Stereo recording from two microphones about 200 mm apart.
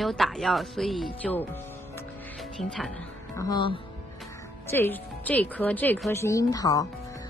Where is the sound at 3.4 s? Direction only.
20° left (ahead or behind).